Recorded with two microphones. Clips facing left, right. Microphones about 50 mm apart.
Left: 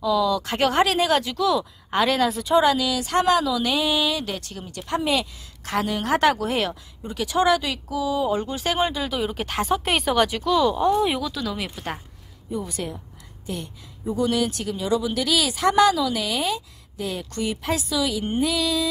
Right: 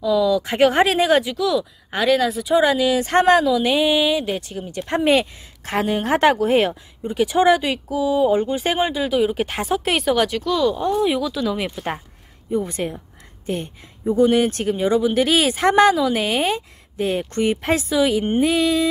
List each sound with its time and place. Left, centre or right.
0.0 s speech: centre; by 1.2 s right
1.2 s speech: centre
2.6 s speech: right
8.8 s speech: centre
11.5 s speech: right